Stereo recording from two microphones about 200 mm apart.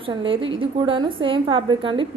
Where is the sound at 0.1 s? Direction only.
25° right (ahead or behind).